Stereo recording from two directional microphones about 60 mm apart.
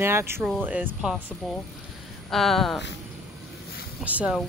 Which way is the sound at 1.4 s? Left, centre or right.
Centre.